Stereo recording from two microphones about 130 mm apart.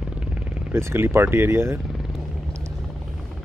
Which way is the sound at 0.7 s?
20° right (ahead or behind).